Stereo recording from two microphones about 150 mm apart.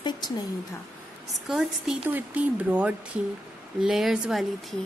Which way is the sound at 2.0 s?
10° right (ahead or behind).